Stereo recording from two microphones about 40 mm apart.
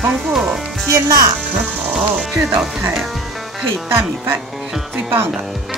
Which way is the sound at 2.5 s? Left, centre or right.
Right.